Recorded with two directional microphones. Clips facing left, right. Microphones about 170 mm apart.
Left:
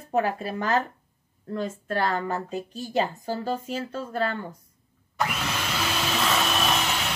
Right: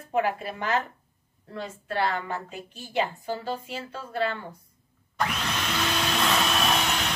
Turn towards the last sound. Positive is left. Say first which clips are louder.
# even
turn(degrees=0)  # may be behind; listen again after turning